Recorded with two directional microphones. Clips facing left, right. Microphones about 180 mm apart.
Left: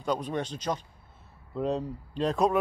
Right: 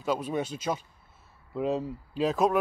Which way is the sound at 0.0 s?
5° right (ahead or behind).